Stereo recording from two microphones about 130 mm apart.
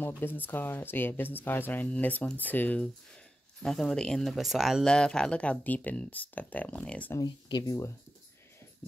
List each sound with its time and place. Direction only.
0.2 s speech: 15° left (ahead or behind)
3.6 s speech: 5° left (ahead or behind)
7.2 s speech: 30° left (ahead or behind)